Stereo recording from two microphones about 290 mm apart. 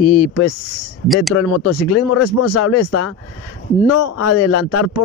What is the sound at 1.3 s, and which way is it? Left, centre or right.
A man's voice, left.